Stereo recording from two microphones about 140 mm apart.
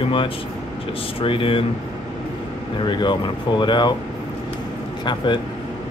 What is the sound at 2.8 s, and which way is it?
Speech, 30° left (ahead or behind).